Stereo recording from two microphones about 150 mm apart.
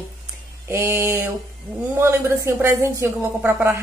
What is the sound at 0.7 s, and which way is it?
A woman's voice, 15° right (ahead or behind).